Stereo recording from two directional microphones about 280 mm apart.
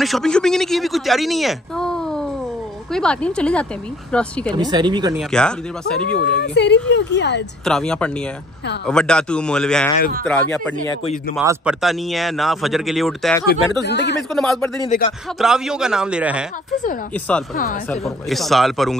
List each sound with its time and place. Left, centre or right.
0.0 s a man's voice: centre
4.6 s speech: centre
5.1 s speech: centre
6.2 s speech: left
7.6 s speech: centre
13.8 s speech: left
14.3 s speech: centre
14.9 s speech: left
15.3 s speech: centre
17.6 s speech: left
18.0 s speech: centre